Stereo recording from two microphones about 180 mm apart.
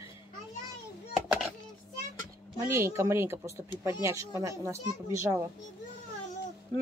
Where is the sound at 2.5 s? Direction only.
15° right (ahead or behind).